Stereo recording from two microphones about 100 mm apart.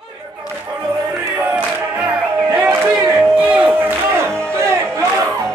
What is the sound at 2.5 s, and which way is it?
Music, 15° right (ahead or behind).